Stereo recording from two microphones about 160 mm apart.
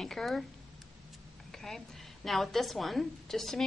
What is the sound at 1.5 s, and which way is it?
A woman's voice, centre (ahead or behind).